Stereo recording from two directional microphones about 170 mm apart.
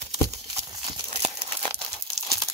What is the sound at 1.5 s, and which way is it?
Crumpling, 30° right (ahead or behind).